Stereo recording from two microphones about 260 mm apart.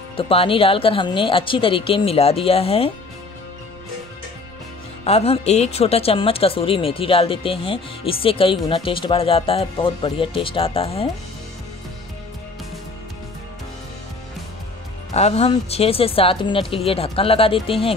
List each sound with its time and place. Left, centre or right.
0.2 s a woman's voice: left
5.0 s a woman's voice: left
15.1 s a woman's voice: left